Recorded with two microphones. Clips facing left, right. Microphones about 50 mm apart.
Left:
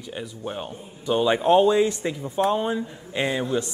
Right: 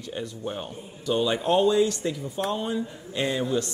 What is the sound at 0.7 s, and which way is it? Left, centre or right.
A man's voice, left.